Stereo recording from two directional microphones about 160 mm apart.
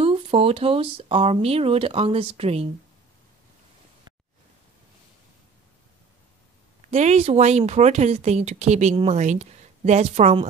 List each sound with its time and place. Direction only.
0.0 s speech: 35° right (ahead or behind)
6.9 s a woman's voice: 45° right (ahead or behind)